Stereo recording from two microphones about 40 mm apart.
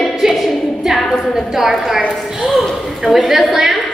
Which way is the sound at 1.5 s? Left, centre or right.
Centre.